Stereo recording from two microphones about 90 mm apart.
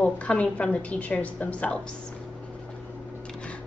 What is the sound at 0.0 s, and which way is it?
A woman's voice, 15° left (ahead or behind).